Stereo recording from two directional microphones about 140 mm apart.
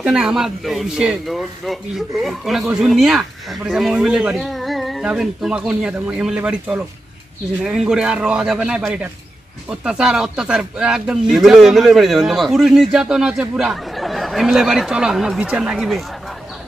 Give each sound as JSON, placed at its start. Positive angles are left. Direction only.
{"t": 0.0, "sound": "a man's voice", "side_deg": -5}
{"t": 7.6, "sound": "speech", "side_deg": -5}